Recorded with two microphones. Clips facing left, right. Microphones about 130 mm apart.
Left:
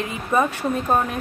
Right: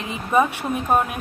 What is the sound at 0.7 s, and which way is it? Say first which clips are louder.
Speech: right 1 dB; 10° right (ahead or behind).